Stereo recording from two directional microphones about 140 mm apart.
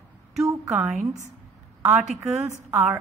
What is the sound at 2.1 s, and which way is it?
Speech, 20° right (ahead or behind).